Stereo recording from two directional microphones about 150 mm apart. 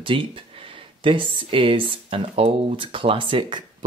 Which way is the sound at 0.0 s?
35° right (ahead or behind).